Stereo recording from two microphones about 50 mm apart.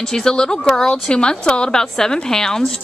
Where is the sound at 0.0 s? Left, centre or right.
Centre.